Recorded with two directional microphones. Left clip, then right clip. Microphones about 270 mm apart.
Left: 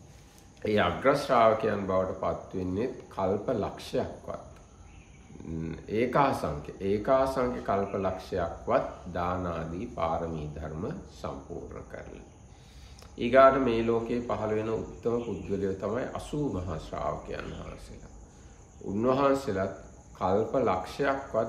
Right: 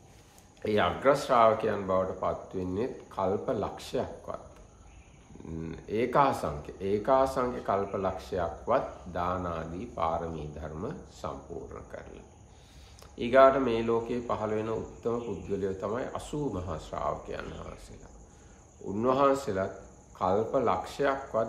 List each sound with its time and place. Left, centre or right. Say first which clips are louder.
0.6 s speech: left 1 dB; centre
5.6 s speech: left 1 dB; centre
18.9 s speech: even; centre